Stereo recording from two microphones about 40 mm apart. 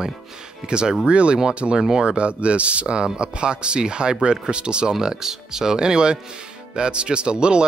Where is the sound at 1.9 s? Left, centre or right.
Centre.